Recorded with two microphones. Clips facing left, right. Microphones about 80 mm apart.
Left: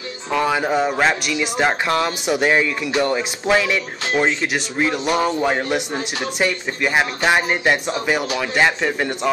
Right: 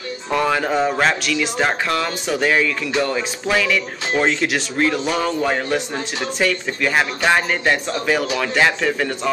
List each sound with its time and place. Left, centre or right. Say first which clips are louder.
0.3 s a man's voice: even; centre
1.9 s speech: left 2 dB; left
4.1 s a man's voice: right 1 dB; centre